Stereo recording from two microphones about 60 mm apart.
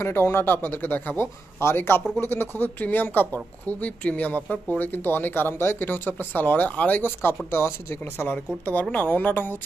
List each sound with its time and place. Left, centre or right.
0.0 s speech: left
1.1 s speech: left
8.3 s speech: left